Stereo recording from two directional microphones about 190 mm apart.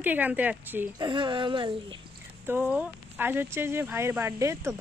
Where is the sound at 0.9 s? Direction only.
25° right (ahead or behind).